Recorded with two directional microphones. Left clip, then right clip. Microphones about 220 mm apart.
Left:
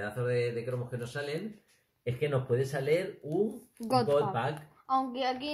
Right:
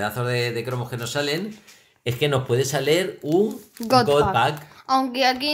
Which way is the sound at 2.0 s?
45° right (ahead or behind).